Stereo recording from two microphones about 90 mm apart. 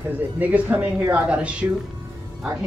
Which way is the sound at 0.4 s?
15° right (ahead or behind).